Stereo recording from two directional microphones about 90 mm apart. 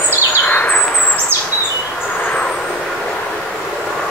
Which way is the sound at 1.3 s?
20° right (ahead or behind).